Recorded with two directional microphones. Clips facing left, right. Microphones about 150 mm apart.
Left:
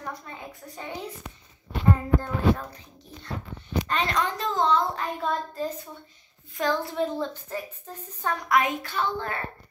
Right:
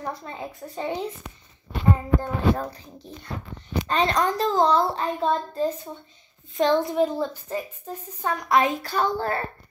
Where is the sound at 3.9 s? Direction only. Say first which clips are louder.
Right 6 dB; 35° right (ahead or behind); by 8.3 s 15° right (ahead or behind).